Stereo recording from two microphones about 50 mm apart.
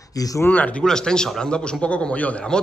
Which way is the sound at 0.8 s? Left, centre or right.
Centre.